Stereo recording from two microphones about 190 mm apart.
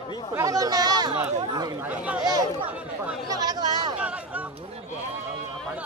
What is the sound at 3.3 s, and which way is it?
Chatter, 20° right (ahead or behind).